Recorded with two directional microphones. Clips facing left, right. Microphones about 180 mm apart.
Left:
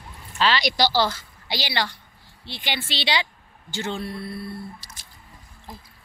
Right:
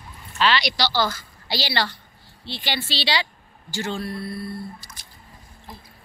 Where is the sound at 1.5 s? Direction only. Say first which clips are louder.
Right 2 dB; 15° left (ahead or behind).